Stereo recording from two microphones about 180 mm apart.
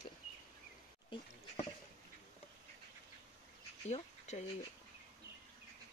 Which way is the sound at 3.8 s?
40° left (ahead or behind).